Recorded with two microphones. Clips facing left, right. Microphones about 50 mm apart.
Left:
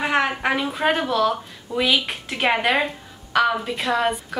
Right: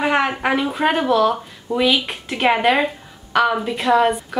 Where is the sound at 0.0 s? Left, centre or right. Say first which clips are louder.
Right 3 dB; centre.